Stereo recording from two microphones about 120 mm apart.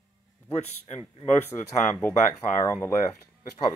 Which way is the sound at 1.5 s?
25° left (ahead or behind).